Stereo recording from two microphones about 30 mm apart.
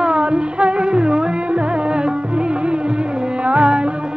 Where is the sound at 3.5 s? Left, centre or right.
Right.